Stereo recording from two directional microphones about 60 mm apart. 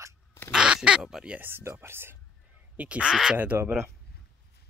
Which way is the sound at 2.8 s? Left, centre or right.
Centre.